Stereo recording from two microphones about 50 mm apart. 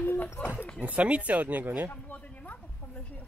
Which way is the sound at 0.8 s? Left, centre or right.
Right.